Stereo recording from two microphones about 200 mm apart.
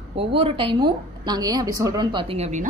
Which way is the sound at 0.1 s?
30° right (ahead or behind).